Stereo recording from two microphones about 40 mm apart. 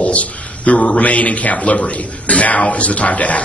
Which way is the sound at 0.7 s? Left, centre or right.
Left.